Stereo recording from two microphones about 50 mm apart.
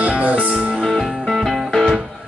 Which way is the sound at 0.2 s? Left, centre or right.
Right.